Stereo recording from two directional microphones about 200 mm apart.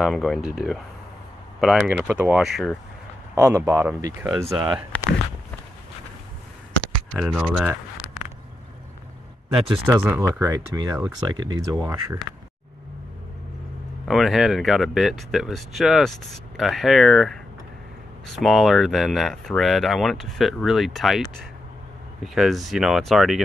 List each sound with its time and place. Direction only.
0.0 s speech: centre (ahead or behind)
3.3 s speech: 15° right (ahead or behind)
7.2 s speech: centre (ahead or behind)
9.8 s speech: 10° right (ahead or behind)
14.0 s speech: centre (ahead or behind)